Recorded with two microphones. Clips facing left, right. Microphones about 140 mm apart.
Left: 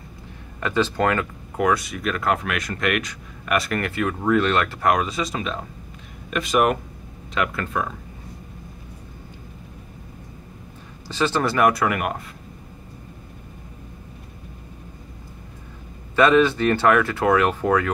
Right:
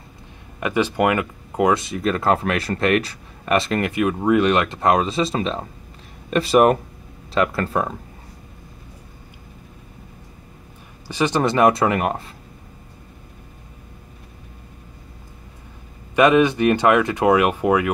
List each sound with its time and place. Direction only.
0.6 s speech: 15° right (ahead or behind); by 7.9 s 35° right (ahead or behind)
11.1 s speech: 15° right (ahead or behind)
16.2 s speech: 15° right (ahead or behind)